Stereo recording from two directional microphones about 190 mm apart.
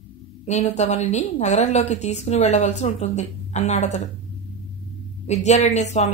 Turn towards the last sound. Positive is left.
turn(degrees=35)  # may be behind; listen again after turning